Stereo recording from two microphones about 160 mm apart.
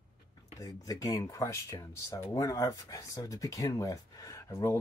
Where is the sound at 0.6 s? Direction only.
20° left (ahead or behind).